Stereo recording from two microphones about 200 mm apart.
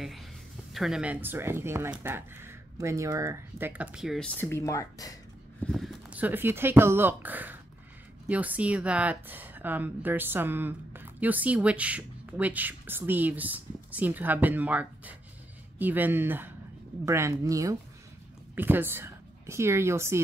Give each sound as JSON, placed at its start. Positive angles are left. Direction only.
{"t": 0.7, "sound": "a woman's voice", "side_deg": 0}
{"t": 5.7, "sound": "a woman's voice", "side_deg": 0}